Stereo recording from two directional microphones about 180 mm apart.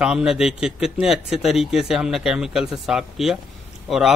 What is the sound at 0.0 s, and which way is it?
Speech, 5° right (ahead or behind).